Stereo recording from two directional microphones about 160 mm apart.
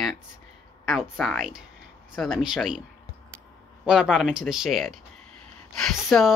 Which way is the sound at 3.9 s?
Centre (ahead or behind).